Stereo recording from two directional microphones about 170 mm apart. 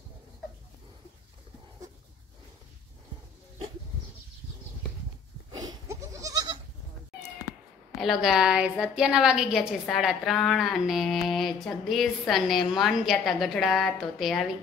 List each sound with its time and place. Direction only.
5.5 s goat: 20° right (ahead or behind)
8.0 s a woman's voice: centre (ahead or behind)